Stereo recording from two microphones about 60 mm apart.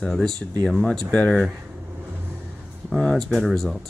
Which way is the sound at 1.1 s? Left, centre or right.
Centre.